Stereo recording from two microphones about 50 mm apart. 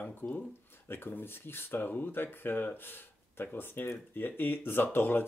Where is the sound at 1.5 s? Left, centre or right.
Left.